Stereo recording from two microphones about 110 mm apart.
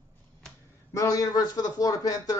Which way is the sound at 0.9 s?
30° left (ahead or behind).